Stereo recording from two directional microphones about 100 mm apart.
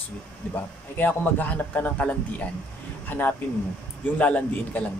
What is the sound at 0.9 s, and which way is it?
A man's voice, 20° left (ahead or behind).